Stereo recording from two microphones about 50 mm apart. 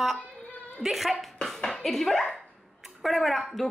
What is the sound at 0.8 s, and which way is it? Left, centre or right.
A woman's voice, centre.